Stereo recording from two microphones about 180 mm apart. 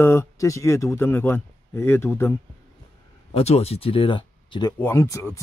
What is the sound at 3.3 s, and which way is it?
Speech, 35° left (ahead or behind).